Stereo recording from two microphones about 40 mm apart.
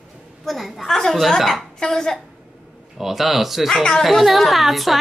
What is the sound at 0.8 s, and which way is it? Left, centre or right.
Speech, centre.